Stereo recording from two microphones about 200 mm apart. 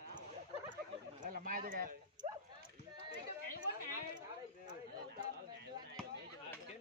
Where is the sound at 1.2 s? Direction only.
45° right (ahead or behind).